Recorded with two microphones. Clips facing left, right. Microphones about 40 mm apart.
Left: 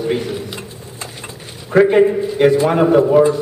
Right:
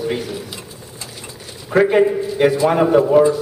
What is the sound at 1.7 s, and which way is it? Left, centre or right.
A man's voice, centre.